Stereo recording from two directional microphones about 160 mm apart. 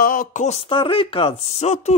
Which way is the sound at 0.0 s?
60° left (ahead or behind).